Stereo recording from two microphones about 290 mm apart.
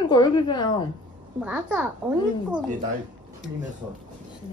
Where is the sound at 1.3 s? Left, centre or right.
Centre.